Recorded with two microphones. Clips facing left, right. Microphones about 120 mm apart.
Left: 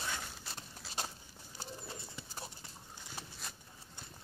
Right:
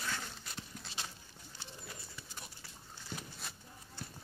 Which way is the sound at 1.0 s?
45° left (ahead or behind).